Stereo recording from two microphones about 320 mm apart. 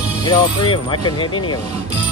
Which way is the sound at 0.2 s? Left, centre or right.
Centre.